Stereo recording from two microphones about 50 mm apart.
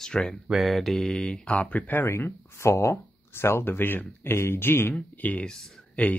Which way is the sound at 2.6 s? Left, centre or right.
Left.